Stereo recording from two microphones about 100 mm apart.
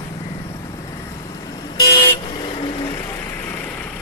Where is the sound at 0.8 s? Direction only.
35° left (ahead or behind).